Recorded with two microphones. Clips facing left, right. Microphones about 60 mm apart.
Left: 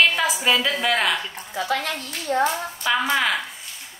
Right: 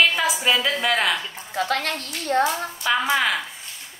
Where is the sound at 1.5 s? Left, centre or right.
Right.